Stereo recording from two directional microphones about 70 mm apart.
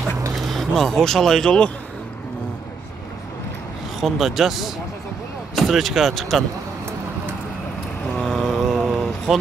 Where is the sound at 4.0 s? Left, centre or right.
Centre.